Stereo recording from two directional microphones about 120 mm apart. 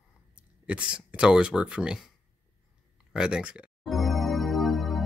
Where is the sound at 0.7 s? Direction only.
10° right (ahead or behind).